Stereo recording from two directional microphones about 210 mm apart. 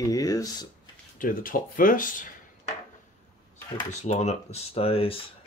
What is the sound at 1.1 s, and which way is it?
Speech, 40° left (ahead or behind).